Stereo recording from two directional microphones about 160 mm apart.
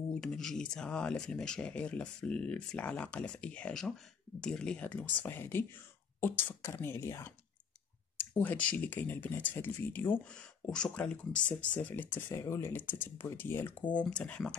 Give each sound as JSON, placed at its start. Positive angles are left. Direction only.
{"t": 0.1, "sound": "speech", "side_deg": 5}